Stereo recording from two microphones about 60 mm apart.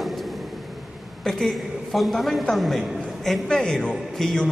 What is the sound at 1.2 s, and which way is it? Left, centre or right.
A woman's voice, centre.